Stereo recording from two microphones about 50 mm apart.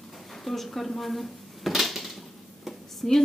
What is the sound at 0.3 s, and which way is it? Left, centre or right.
Speech, centre.